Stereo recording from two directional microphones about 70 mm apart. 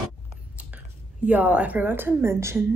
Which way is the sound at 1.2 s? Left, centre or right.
Right.